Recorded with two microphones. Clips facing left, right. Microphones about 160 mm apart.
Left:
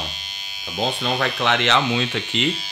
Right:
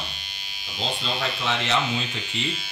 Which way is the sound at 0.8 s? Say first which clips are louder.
Left 6 dB; 55° left (ahead or behind).